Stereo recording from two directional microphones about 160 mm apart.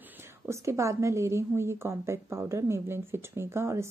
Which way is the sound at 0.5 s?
20° right (ahead or behind).